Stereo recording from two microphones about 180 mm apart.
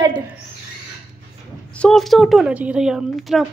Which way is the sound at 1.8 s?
Centre (ahead or behind).